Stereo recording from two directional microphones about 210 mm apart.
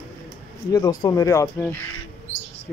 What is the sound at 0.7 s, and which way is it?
Speech, 20° left (ahead or behind).